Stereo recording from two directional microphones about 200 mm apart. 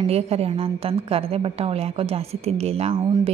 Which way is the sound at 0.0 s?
30° right (ahead or behind).